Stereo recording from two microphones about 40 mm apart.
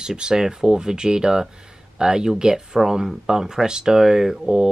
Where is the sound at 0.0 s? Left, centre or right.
Centre.